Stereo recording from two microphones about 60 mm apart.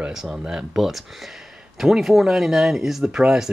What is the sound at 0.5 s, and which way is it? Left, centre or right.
Speech, centre.